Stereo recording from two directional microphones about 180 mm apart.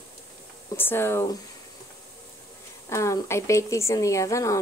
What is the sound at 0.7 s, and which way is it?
Speech, 10° left (ahead or behind).